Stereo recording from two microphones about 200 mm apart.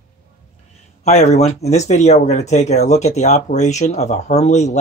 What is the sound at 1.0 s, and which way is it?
Speech, 35° left (ahead or behind).